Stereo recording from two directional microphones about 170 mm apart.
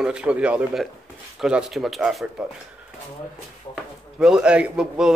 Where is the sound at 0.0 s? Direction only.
5° right (ahead or behind).